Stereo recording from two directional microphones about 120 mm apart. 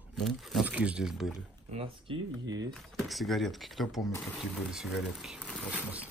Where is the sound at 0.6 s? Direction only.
10° right (ahead or behind).